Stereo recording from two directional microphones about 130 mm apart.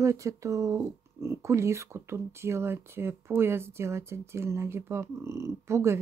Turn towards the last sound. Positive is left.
turn(degrees=-20)  # may be behind; listen again after turning